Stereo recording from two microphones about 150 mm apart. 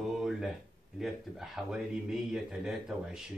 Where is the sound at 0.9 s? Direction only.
Centre (ahead or behind).